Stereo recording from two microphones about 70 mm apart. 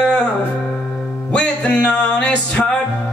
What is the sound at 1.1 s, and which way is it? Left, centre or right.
Music, centre.